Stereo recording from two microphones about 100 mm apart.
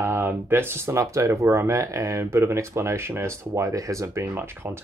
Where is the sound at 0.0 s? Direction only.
25° right (ahead or behind).